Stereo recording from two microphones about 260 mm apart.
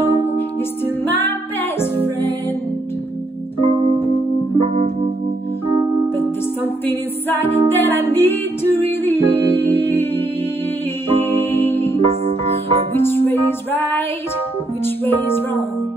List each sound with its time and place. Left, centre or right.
1.0 s music: centre
4.6 s music: right
6.1 s music: centre
11.1 s music: centre
12.3 s music: right
12.9 s music: centre
15.0 s music: centre